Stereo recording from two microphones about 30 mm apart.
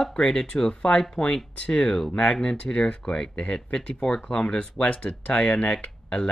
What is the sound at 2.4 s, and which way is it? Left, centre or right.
Speech, left.